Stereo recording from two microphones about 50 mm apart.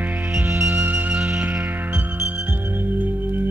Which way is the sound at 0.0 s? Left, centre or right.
Right.